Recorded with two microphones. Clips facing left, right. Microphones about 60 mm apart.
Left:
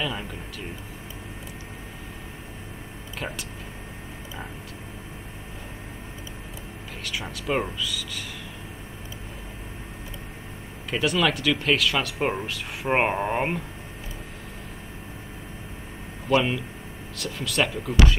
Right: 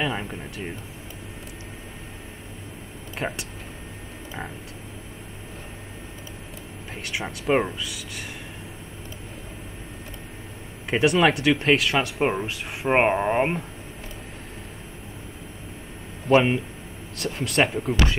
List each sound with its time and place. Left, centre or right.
0.0 s speech: right
3.2 s speech: right
7.2 s speech: right
10.9 s speech: right
12.0 s speech: centre
16.3 s speech: right